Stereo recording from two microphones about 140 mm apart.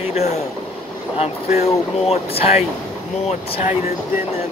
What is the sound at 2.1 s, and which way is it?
Speech, 45° left (ahead or behind).